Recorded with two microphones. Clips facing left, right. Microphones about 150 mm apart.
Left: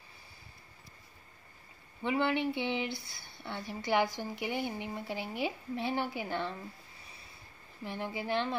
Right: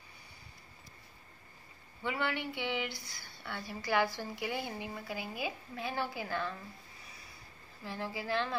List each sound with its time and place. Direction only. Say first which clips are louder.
2.0 s speech: left 5 dB; 25° left (ahead or behind)
7.8 s speech: left 2 dB; 20° left (ahead or behind)